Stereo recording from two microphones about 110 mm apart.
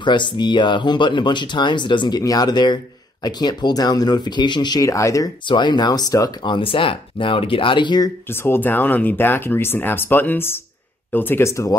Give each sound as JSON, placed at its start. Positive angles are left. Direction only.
{"t": 0.0, "sound": "speech", "side_deg": 45}
{"t": 5.5, "sound": "speech", "side_deg": 45}
{"t": 6.5, "sound": "speech", "side_deg": 55}
{"t": 8.3, "sound": "speech", "side_deg": 20}